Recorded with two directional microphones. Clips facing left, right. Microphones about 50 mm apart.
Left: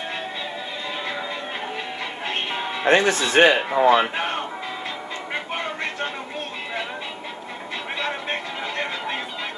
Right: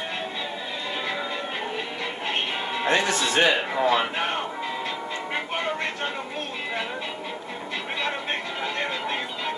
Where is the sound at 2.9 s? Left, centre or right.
Left.